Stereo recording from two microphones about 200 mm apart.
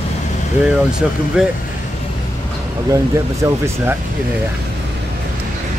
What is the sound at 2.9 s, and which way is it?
Speech, 15° right (ahead or behind).